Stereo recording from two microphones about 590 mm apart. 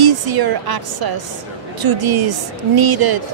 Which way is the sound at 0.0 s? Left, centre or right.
Right.